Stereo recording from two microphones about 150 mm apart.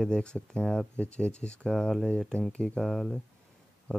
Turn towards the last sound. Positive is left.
turn(degrees=10)  # may be behind; listen again after turning